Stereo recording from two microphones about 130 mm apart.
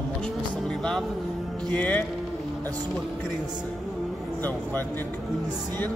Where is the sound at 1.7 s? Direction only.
10° left (ahead or behind).